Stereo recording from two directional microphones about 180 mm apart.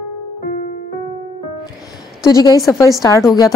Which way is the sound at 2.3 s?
20° left (ahead or behind).